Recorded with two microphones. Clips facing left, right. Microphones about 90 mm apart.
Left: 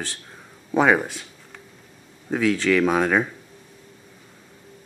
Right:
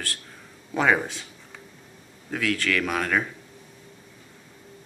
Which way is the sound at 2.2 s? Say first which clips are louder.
Left 6 dB; 20° left (ahead or behind).